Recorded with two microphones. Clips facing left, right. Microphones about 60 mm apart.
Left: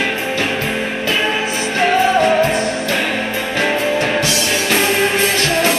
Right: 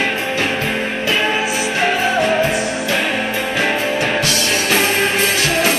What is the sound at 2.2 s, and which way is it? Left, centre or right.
Music, centre.